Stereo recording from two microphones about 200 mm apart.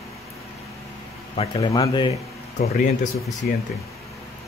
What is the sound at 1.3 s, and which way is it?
Speech, 30° left (ahead or behind).